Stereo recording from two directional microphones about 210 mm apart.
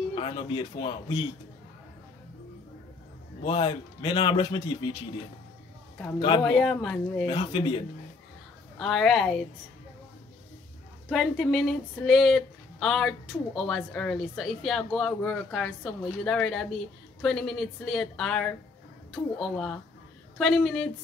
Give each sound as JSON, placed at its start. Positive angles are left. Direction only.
{"t": 0.1, "sound": "a man's voice", "side_deg": 25}
{"t": 3.4, "sound": "a man's voice", "side_deg": 25}
{"t": 6.1, "sound": "a man's voice", "side_deg": 25}
{"t": 6.4, "sound": "speech", "side_deg": 0}
{"t": 7.2, "sound": "a man's voice", "side_deg": 25}
{"t": 8.7, "sound": "speech", "side_deg": 0}
{"t": 11.1, "sound": "speech", "side_deg": 0}